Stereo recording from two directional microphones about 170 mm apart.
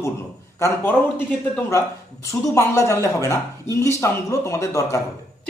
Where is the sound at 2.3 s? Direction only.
15° left (ahead or behind).